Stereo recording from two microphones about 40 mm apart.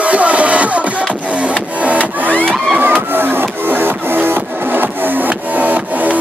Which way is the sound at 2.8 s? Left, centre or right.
Right.